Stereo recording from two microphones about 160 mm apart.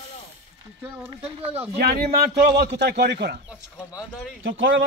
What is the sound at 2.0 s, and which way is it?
A man's voice, 90° right.